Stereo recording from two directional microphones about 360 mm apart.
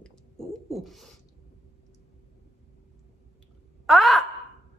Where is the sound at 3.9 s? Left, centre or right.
Centre.